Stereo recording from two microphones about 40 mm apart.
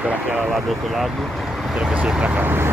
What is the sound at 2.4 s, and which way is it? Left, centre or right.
Speech, right.